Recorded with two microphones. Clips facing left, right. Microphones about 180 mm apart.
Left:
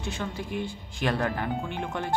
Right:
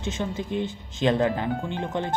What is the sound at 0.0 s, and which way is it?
Speech, 20° right (ahead or behind).